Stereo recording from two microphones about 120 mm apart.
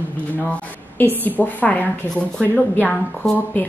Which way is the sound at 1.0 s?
15° left (ahead or behind).